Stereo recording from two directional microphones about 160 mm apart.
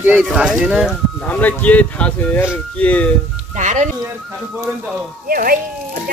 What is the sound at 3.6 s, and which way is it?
Speech, 50° right (ahead or behind).